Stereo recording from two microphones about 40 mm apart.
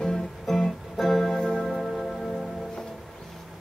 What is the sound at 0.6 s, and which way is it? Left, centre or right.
Music, centre.